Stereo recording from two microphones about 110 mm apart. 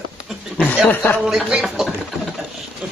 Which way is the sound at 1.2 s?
5° right (ahead or behind).